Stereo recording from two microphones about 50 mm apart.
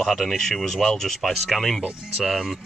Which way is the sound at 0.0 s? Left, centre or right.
Centre.